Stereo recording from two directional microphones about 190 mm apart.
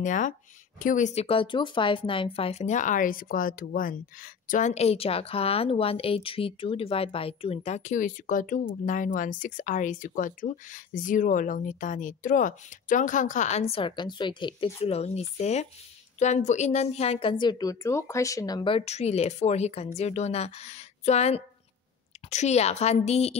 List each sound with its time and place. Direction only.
0.0 s speech: 40° left (ahead or behind)